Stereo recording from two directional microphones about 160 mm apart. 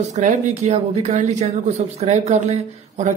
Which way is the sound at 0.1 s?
45° right (ahead or behind).